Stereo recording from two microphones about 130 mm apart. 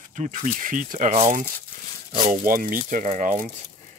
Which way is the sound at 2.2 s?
85° right.